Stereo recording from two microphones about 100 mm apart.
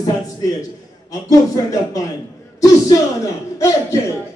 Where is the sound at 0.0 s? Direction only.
40° left (ahead or behind).